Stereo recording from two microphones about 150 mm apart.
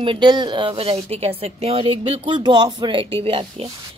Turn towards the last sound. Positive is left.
turn(degrees=-40)  # may be behind; listen again after turning